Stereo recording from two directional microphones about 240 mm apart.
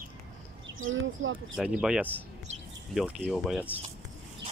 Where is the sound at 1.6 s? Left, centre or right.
Centre.